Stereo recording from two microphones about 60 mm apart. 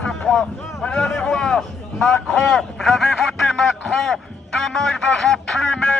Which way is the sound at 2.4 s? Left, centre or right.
Centre.